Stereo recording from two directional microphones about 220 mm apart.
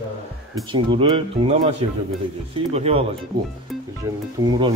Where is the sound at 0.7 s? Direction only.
20° right (ahead or behind).